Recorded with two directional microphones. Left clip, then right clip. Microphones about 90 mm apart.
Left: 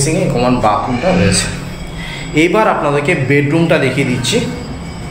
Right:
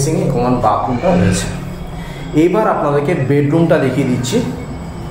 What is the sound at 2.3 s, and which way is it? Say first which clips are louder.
A man's voice: left 1 dB; 15° right (ahead or behind).